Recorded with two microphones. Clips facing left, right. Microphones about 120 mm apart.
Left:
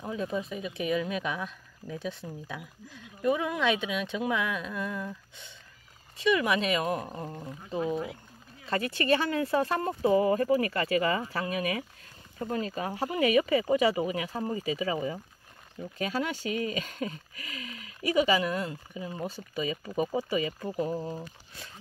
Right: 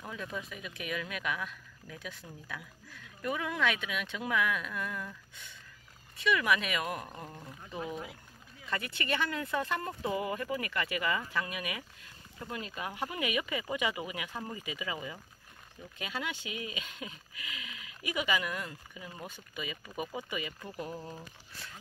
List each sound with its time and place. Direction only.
0.0 s speech: 25° left (ahead or behind)